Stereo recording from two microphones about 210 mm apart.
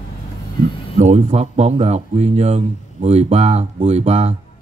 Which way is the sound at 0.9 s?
35° right (ahead or behind).